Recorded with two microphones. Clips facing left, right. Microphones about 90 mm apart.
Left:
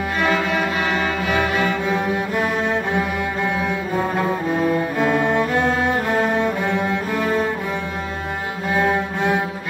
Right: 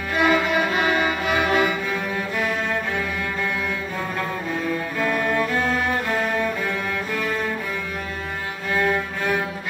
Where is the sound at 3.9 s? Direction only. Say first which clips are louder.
Left 6 dB; 25° left (ahead or behind).